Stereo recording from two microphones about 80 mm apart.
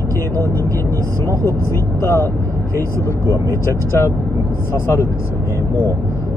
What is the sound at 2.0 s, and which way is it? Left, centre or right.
Speech, left.